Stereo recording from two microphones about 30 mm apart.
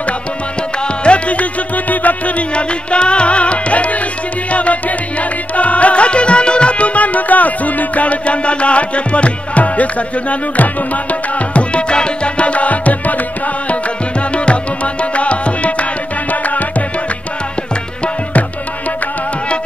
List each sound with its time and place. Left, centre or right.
1.0 s music: left
2.5 s music: left
14.3 s music: left